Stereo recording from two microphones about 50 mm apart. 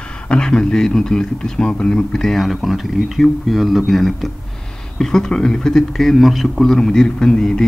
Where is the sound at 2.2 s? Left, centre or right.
Centre.